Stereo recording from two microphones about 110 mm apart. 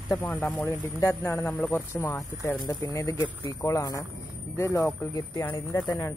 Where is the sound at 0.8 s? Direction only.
20° left (ahead or behind).